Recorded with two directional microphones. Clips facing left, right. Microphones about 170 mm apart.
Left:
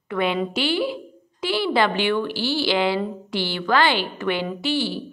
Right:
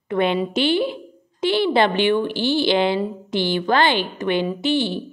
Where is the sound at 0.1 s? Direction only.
25° right (ahead or behind).